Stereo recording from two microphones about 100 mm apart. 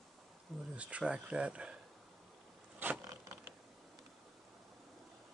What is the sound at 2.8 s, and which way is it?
Creak, 20° right (ahead or behind).